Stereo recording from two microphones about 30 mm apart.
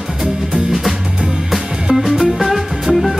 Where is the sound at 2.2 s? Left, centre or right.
Centre.